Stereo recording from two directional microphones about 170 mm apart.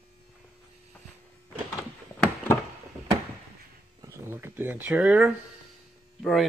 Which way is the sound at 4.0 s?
10° right (ahead or behind).